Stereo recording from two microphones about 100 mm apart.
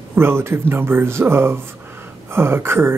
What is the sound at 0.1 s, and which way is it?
Speech, 25° right (ahead or behind).